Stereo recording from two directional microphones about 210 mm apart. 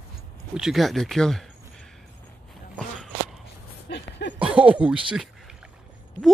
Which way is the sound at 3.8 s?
55° left (ahead or behind).